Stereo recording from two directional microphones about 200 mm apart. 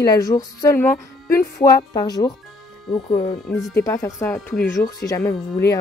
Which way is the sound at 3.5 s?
10° left (ahead or behind).